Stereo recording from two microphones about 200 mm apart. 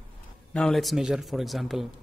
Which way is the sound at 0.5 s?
Centre (ahead or behind).